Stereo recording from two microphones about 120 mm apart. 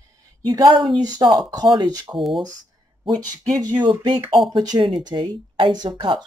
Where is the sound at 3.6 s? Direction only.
35° right (ahead or behind).